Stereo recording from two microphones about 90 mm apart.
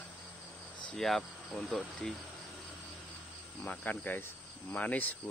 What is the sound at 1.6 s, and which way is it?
Speech, 5° left (ahead or behind).